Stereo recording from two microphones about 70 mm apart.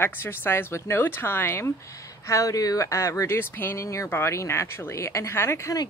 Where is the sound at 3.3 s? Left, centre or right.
Left.